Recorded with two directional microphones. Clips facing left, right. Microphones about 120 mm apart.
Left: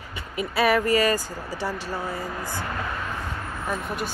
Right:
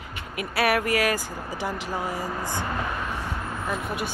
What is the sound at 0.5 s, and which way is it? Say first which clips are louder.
Speech: left 2 dB; 5° right (ahead or behind).